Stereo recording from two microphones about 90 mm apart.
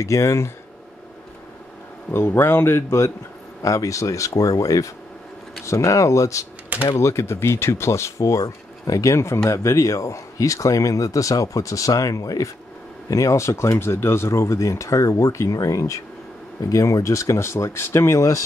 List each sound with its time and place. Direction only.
0.0 s speech: 35° left (ahead or behind)
2.0 s speech: 25° left (ahead or behind)